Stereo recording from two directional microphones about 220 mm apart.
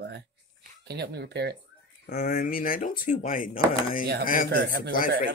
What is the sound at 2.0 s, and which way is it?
Speech, 45° left (ahead or behind).